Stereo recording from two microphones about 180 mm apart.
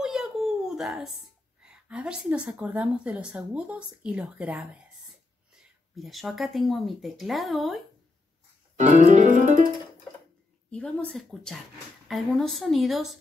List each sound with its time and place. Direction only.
0.0 s a sound: centre (ahead or behind)
1.6 s a woman's voice: 5° right (ahead or behind)
5.9 s speech: centre (ahead or behind)
8.7 s music: 40° right (ahead or behind)
10.7 s speech: 5° left (ahead or behind)